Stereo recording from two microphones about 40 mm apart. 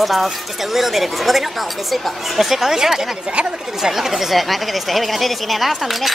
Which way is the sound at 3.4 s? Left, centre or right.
Right.